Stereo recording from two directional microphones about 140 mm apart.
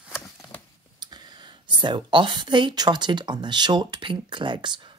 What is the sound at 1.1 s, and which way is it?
Speech, 30° right (ahead or behind).